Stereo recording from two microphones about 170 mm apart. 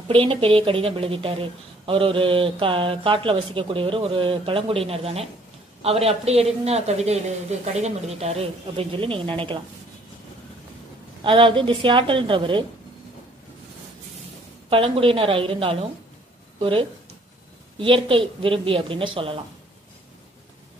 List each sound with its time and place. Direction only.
0.1 s a woman's voice: 35° right (ahead or behind)
11.2 s a woman's voice: 30° right (ahead or behind)
14.7 s a woman's voice: 30° right (ahead or behind)